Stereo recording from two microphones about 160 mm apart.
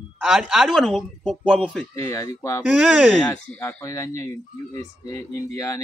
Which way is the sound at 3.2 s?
20° left (ahead or behind).